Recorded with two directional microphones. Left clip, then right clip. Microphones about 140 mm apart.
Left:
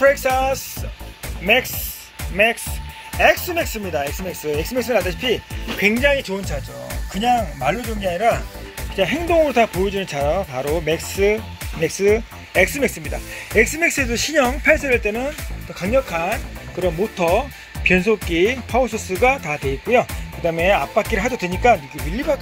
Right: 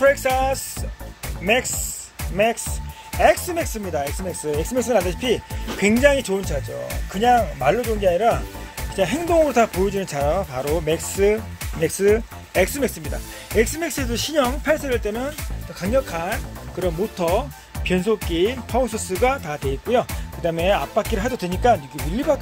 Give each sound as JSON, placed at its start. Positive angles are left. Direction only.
{"t": 0.0, "sound": "speech", "side_deg": -5}
{"t": 2.3, "sound": "speech", "side_deg": -20}
{"t": 3.8, "sound": "speech", "side_deg": 0}
{"t": 4.6, "sound": "speech", "side_deg": -20}
{"t": 7.6, "sound": "speech", "side_deg": -45}
{"t": 8.9, "sound": "speech", "side_deg": -5}
{"t": 15.8, "sound": "speech", "side_deg": 15}
{"t": 16.8, "sound": "speech", "side_deg": 5}
{"t": 19.4, "sound": "speech", "side_deg": 10}
{"t": 20.4, "sound": "speech", "side_deg": -5}
{"t": 22.1, "sound": "speech", "side_deg": -20}